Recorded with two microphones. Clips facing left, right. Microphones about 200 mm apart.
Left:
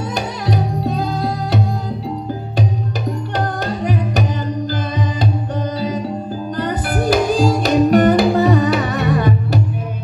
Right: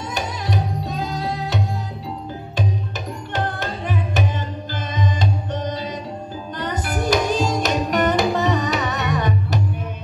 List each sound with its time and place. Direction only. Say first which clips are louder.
3.6 s music: left 5 dB; 40° left (ahead or behind)
6.5 s music: left 5 dB; 40° left (ahead or behind)